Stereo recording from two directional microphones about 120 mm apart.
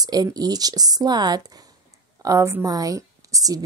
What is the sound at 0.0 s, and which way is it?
A woman's voice, 35° right (ahead or behind).